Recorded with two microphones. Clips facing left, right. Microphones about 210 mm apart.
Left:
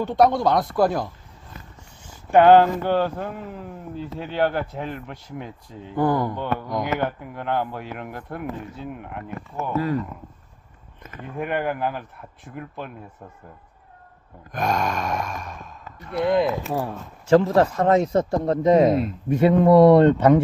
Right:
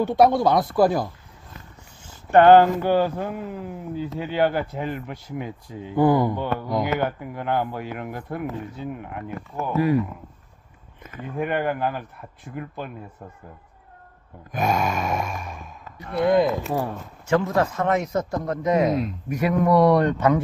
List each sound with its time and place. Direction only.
0.0 s speech: 5° right (ahead or behind)
2.3 s speech: centre (ahead or behind)
9.8 s speech: 15° right (ahead or behind)
11.3 s speech: centre (ahead or behind)
14.5 s speech: 5° right (ahead or behind)
17.3 s speech: 35° left (ahead or behind)